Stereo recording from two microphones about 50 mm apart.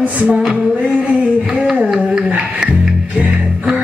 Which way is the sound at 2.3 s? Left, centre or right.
Centre.